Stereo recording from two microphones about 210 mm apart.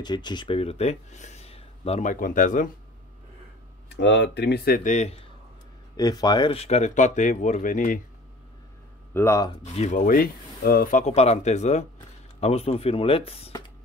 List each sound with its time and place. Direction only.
0.0 s speech: 20° left (ahead or behind); by 2.7 s 40° left (ahead or behind)
3.9 s speech: 55° left (ahead or behind); by 5.2 s 35° left (ahead or behind)
5.9 s speech: 20° left (ahead or behind); by 8.0 s 40° left (ahead or behind)
9.1 s speech: 10° left (ahead or behind)
9.6 s speech: 30° left (ahead or behind)